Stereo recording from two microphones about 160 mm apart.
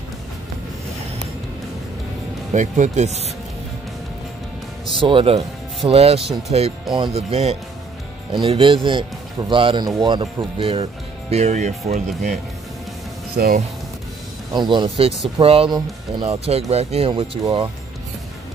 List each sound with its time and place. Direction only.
2.5 s speech: 50° right (ahead or behind)
5.0 s speech: 35° right (ahead or behind)
13.4 s speech: 65° right (ahead or behind)
14.5 s speech: 30° right (ahead or behind)